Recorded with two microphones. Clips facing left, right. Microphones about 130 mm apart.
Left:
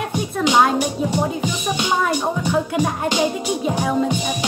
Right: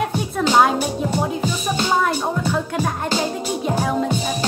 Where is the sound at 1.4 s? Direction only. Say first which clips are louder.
Even; 15° left (ahead or behind).